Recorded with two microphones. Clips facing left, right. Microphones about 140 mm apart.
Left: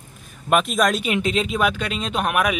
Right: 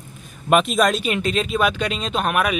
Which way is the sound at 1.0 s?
15° left (ahead or behind).